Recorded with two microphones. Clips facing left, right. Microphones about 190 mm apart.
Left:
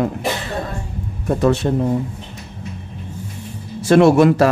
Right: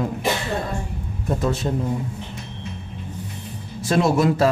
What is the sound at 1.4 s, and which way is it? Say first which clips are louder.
Speech: left 8 dB; 70° left (ahead or behind).